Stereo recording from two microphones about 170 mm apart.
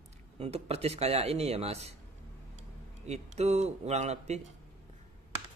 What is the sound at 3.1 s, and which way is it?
A man's voice, 40° right (ahead or behind).